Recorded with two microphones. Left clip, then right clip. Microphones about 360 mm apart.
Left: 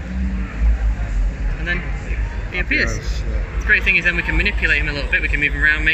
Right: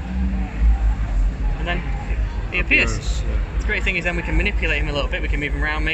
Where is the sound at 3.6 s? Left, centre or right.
Centre.